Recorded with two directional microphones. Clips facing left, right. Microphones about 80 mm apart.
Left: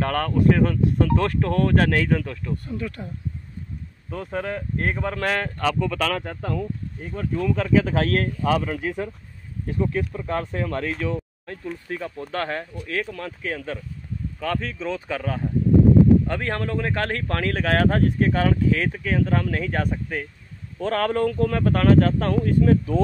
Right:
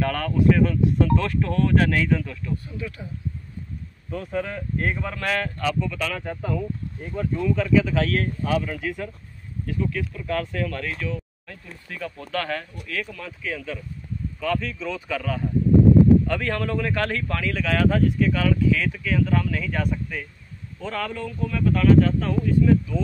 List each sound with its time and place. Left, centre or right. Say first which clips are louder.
0.0 s speech: left 1 dB; left
4.1 s speech: even; left
7.5 s speech: even; left
13.2 s speech: left 2 dB; left
20.8 s speech: left 8 dB; left